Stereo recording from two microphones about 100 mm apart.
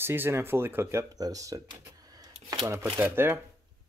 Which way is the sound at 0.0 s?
20° right (ahead or behind).